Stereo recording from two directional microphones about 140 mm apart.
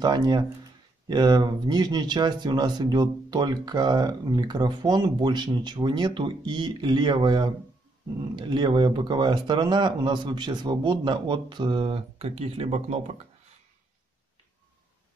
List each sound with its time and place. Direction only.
0.0 s speech: 30° right (ahead or behind); by 13.1 s 50° right (ahead or behind)